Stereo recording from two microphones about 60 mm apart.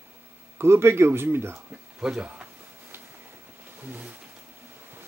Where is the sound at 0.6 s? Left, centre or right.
Right.